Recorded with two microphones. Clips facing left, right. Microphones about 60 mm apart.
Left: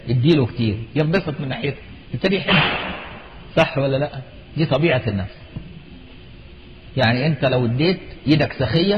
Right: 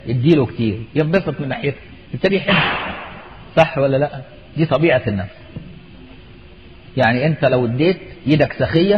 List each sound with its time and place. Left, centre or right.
0.0 s a man's voice: centre
6.9 s a man's voice: centre